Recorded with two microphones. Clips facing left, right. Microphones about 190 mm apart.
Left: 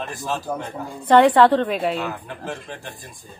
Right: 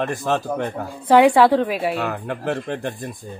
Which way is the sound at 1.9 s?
60° right (ahead or behind).